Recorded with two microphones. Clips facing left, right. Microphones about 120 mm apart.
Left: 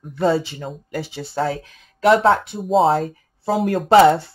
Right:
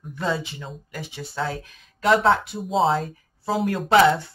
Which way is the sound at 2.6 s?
Centre (ahead or behind).